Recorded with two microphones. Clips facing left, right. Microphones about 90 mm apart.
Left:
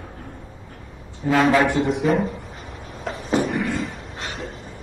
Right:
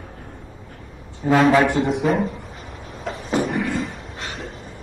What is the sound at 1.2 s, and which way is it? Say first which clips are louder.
Speech: right 2 dB; 50° right (ahead or behind).